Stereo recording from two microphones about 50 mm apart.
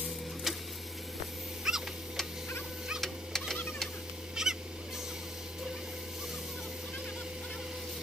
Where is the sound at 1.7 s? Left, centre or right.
Centre.